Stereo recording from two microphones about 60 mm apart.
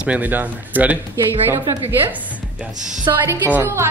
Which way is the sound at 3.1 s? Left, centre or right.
Right.